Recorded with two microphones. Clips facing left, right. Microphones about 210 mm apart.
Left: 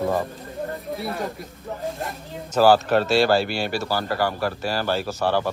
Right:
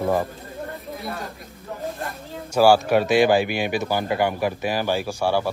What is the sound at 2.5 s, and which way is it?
Speech, 10° right (ahead or behind).